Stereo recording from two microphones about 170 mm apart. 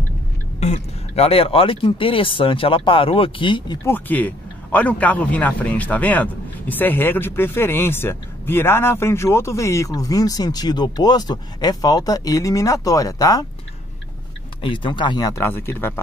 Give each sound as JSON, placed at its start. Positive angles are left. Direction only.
{"t": 0.6, "sound": "speech", "side_deg": 40}
{"t": 3.8, "sound": "a man's voice", "side_deg": 10}
{"t": 14.6, "sound": "speech", "side_deg": 30}